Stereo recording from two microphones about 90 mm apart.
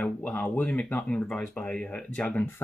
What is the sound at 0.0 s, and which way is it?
Speech, 20° left (ahead or behind).